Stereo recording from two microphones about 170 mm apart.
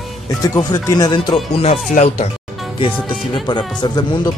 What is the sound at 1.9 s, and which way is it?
Speech, 40° left (ahead or behind).